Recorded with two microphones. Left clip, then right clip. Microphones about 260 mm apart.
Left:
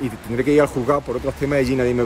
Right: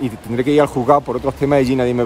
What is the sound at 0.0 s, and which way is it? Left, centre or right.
Speech, centre.